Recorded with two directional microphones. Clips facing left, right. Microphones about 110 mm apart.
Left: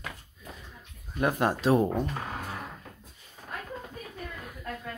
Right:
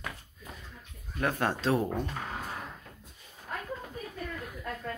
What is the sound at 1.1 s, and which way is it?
Speech, 15° left (ahead or behind).